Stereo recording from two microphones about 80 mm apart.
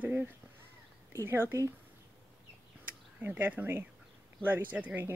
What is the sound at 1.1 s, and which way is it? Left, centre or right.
Speech, right.